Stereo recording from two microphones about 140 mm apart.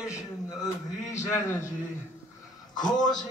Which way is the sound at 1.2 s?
20° left (ahead or behind).